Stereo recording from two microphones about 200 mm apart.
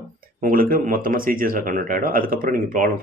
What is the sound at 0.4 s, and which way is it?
Speech, 45° right (ahead or behind).